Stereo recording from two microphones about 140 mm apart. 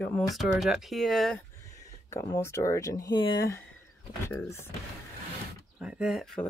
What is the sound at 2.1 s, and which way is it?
Speech, 20° left (ahead or behind).